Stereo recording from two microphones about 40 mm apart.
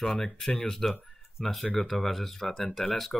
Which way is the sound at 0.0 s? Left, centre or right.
Centre.